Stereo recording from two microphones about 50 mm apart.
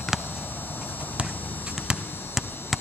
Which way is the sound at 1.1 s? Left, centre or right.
Right.